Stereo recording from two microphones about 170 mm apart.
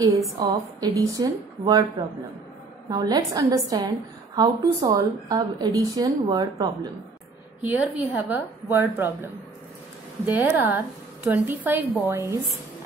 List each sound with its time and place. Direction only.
0.4 s a woman's voice: 20° right (ahead or behind)
7.6 s a woman's voice: 10° right (ahead or behind)